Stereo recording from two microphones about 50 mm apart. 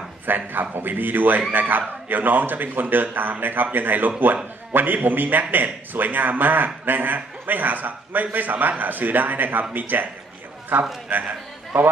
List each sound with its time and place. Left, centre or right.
0.3 s a man's voice: right